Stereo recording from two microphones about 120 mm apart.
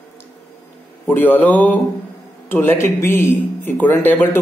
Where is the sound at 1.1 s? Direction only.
15° left (ahead or behind).